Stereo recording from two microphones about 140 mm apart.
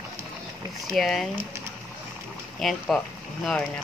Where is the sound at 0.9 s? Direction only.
Centre (ahead or behind).